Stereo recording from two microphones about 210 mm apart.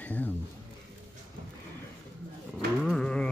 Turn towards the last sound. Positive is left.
turn(degrees=5)  # may be behind; listen again after turning